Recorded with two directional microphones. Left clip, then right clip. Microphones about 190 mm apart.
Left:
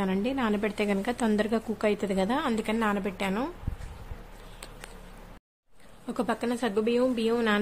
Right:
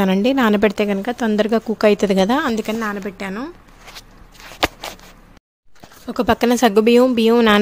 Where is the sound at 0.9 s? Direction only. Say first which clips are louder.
Right 8 dB; 25° right (ahead or behind).